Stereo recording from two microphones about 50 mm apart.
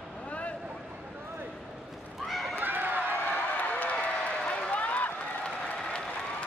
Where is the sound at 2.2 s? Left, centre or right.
Centre.